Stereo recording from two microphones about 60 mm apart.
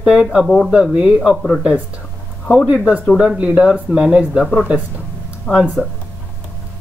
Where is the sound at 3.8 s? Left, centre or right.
Centre.